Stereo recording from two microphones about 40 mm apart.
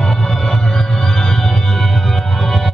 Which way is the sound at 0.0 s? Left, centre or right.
Centre.